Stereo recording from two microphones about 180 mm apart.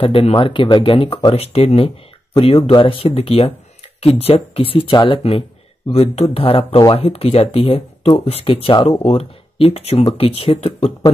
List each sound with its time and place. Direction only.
0.0 s speech: 30° left (ahead or behind)